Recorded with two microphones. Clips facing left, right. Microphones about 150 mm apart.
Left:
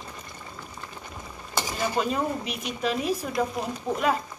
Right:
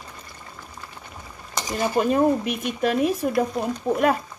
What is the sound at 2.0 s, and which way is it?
Speech, 50° right (ahead or behind).